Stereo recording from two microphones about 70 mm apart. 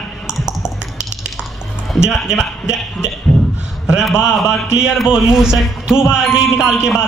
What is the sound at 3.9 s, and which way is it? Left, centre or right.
Speech, centre.